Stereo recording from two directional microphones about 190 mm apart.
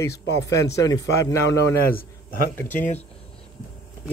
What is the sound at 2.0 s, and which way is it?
Speech, 50° left (ahead or behind).